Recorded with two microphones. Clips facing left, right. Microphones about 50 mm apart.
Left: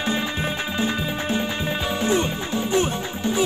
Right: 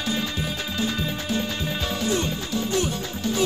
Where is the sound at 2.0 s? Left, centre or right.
Left.